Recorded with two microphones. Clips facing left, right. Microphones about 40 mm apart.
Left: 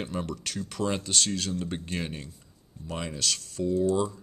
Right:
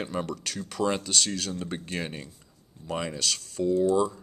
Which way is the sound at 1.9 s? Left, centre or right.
Centre.